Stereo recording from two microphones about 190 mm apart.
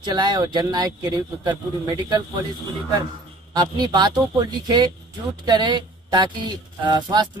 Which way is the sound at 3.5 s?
20° right (ahead or behind).